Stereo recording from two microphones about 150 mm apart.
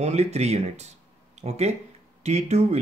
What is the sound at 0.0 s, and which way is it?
Speech, 45° right (ahead or behind).